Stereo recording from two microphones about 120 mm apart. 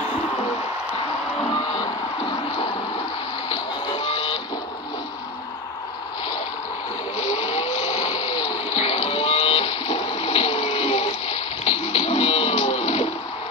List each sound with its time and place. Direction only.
2.2 s a sound: 55° left (ahead or behind)
4.0 s vehicle: 50° left (ahead or behind)
7.2 s vehicle: 65° left (ahead or behind)
8.6 s whale vocalization: 60° left (ahead or behind)